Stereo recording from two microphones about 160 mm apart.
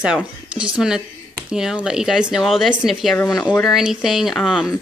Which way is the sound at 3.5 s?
Centre (ahead or behind).